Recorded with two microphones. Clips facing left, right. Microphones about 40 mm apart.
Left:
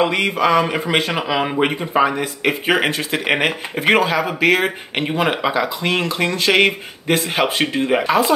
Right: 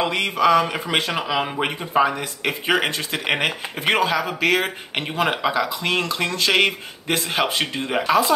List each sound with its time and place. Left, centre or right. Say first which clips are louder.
0.0 s speech: left 2 dB; centre